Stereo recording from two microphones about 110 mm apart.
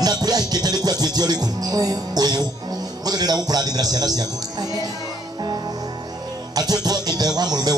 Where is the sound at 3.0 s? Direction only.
35° right (ahead or behind).